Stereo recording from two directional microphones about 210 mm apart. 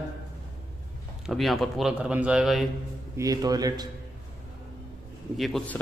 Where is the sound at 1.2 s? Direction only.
Centre (ahead or behind).